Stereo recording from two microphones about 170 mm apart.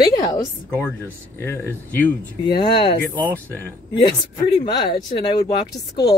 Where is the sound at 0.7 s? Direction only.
10° left (ahead or behind).